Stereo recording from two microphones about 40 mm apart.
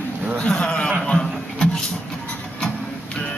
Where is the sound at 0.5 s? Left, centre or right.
Centre.